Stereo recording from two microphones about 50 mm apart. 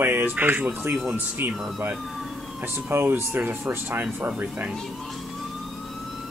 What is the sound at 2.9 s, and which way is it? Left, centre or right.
Speech, right.